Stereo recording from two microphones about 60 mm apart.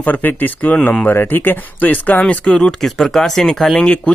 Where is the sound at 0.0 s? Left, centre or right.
Left; by 3.7 s centre.